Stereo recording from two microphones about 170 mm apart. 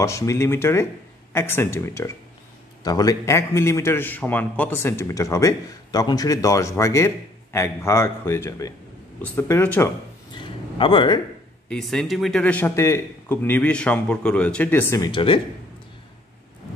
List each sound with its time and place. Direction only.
0.0 s a man's voice: 15° left (ahead or behind)
10.3 s a sound: 30° left (ahead or behind)
11.7 s a man's voice: centre (ahead or behind)
15.0 s speech: 30° left (ahead or behind)